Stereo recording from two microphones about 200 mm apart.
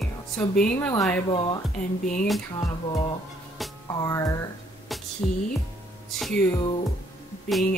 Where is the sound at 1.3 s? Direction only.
25° left (ahead or behind).